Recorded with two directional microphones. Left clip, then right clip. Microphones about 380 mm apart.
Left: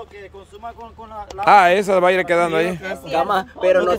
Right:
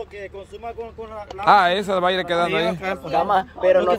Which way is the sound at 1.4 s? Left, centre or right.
Centre.